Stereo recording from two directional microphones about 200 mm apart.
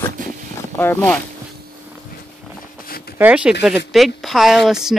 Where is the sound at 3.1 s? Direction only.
5° right (ahead or behind).